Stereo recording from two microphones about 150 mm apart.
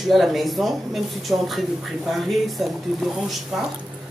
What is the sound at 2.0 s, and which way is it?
Speech, centre (ahead or behind).